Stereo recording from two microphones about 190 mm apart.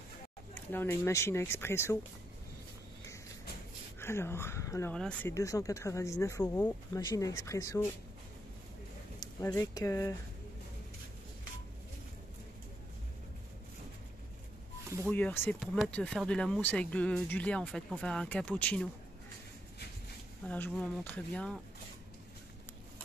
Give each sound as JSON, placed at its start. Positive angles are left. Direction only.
{"t": 0.6, "sound": "speech", "side_deg": 10}
{"t": 4.0, "sound": "speech", "side_deg": 15}
{"t": 4.9, "sound": "speech", "side_deg": 5}
{"t": 5.3, "sound": "speech", "side_deg": 15}
{"t": 9.2, "sound": "speech", "side_deg": 15}
{"t": 15.0, "sound": "speech", "side_deg": 10}
{"t": 20.4, "sound": "speech", "side_deg": 10}